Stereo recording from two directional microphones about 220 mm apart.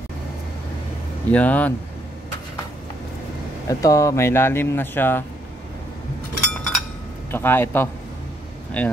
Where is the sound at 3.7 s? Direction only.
15° left (ahead or behind).